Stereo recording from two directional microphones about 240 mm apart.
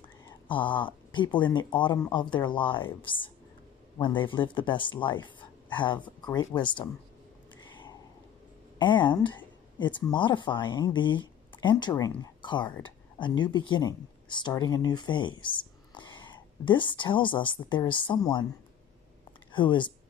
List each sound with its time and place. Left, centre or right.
0.5 s speech: centre
7.7 s a sound: centre
8.7 s speech: centre
19.5 s speech: centre